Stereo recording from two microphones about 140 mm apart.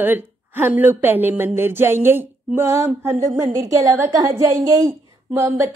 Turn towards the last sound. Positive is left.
turn(degrees=-15)  # may be behind; listen again after turning